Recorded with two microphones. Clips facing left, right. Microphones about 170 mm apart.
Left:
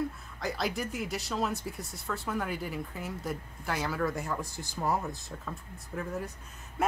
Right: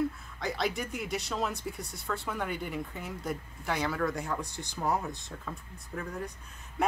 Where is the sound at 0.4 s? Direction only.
Centre (ahead or behind).